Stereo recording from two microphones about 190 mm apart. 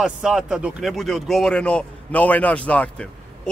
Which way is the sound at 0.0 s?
5° right (ahead or behind).